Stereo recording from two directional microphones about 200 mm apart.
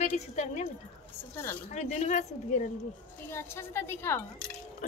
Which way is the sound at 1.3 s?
10° left (ahead or behind).